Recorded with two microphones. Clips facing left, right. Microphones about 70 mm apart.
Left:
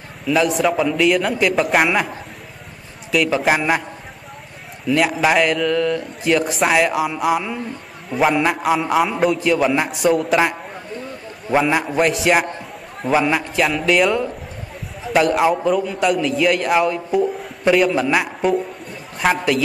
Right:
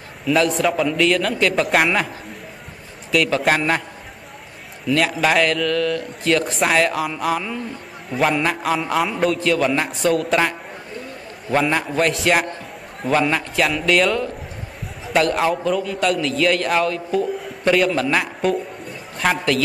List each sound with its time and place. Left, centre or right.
0.3 s speech: centre
3.3 s speech: centre
4.8 s a man's voice: centre
11.5 s a man's voice: centre